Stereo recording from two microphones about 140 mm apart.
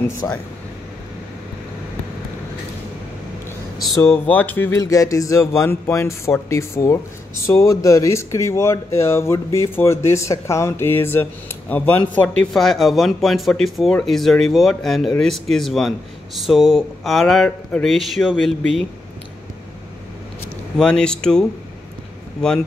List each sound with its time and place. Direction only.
0.2 s speech: 15° left (ahead or behind)
4.0 s speech: 15° left (ahead or behind)
20.7 s speech: 5° left (ahead or behind)